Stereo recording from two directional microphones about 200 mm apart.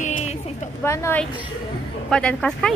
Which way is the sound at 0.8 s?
15° left (ahead or behind).